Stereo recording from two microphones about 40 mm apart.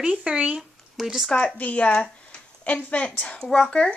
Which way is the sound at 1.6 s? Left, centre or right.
Left.